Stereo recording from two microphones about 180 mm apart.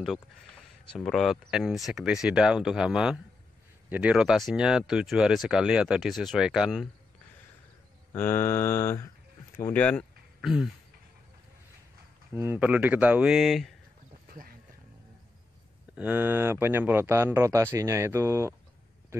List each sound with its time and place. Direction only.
0.9 s speech: centre (ahead or behind)
8.1 s mantra: 15° left (ahead or behind)
9.6 s speech: 10° left (ahead or behind)
12.4 s speech: 10° right (ahead or behind)
14.2 s wild animals: 50° right (ahead or behind)
16.0 s speech: 10° right (ahead or behind)